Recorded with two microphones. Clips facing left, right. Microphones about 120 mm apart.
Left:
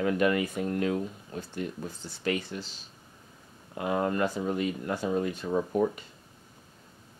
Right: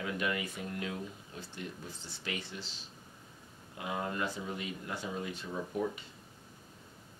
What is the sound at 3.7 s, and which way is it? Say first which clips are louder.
Speech: left 9 dB; 55° left (ahead or behind).